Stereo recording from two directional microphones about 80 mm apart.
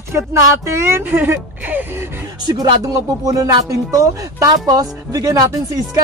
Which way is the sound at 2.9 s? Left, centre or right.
Right.